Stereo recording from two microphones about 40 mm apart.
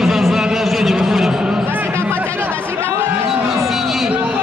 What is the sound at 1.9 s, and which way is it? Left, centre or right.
Chatter, right.